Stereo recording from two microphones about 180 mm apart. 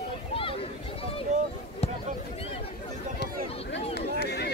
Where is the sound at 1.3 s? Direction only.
40° right (ahead or behind).